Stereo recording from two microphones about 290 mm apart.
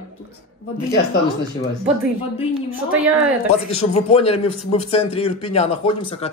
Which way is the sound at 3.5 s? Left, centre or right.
Left.